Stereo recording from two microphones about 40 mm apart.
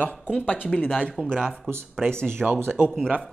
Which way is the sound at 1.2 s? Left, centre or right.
Right.